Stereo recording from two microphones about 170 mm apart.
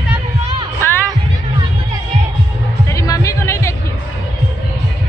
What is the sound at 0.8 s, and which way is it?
Music, 10° left (ahead or behind).